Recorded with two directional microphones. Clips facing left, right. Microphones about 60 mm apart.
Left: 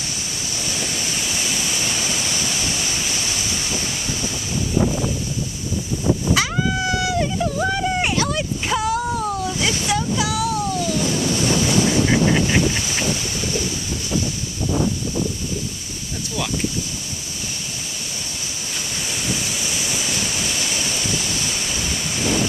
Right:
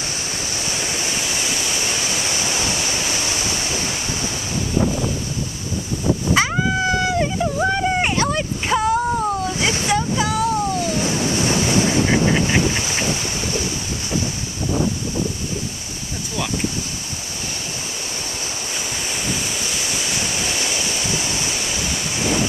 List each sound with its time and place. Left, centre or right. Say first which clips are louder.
0.5 s waterfall: even; right
6.3 s dog: right 2 dB; right
7.3 s a sound: right 2 dB; centre
12.1 s vehicle: even; centre
19.0 s waterfall: even; centre
19.6 s waterfall: even; right